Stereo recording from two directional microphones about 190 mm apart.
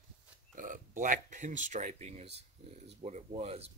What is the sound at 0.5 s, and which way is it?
Speech, 45° right (ahead or behind).